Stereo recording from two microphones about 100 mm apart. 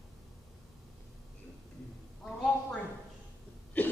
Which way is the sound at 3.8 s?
15° left (ahead or behind).